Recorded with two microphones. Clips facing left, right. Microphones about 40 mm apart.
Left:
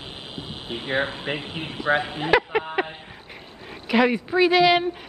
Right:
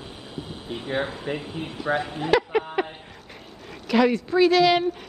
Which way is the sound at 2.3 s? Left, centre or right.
Left.